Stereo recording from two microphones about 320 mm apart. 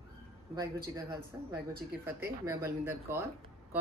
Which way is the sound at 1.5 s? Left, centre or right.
Right.